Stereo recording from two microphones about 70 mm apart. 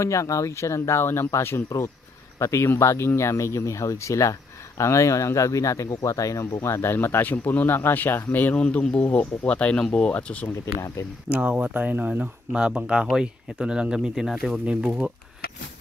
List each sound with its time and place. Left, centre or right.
0.0 s speech: left
6.4 s speech: left; by 9.0 s centre
9.0 s speech: left
11.2 s speech: right; by 14.3 s centre
14.3 s speech: centre